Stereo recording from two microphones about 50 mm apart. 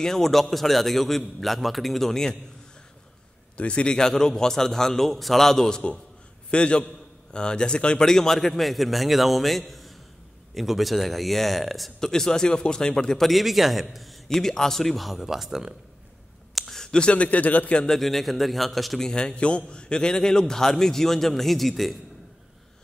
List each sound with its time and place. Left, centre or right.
0.0 s a man's voice: centre
3.5 s a man's voice: left
6.5 s a man's voice: centre
13.2 s a man's voice: centre
16.5 s a sound: centre
17.1 s speech: left
17.7 s a man's voice: centre
18.9 s a man's voice: centre